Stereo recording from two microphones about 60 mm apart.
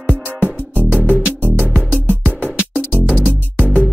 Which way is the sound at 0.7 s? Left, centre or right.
Right.